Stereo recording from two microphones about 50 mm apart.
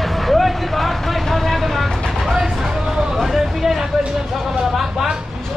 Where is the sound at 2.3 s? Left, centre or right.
Centre.